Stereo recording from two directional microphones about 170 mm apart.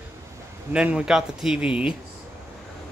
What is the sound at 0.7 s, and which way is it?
Speech, 5° right (ahead or behind).